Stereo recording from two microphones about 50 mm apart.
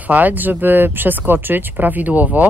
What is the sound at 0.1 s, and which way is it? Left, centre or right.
Speech, right.